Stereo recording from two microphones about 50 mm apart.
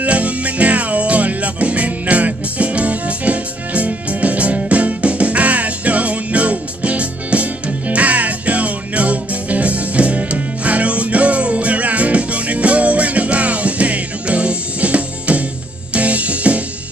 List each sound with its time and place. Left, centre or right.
0.0 s music: right